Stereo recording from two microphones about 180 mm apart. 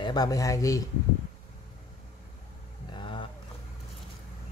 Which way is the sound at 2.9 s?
25° left (ahead or behind).